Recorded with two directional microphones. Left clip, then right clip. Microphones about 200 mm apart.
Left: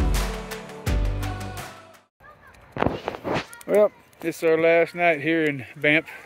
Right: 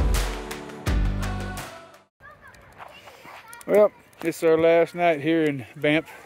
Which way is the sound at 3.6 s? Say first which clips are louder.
Right 2 dB; 10° right (ahead or behind).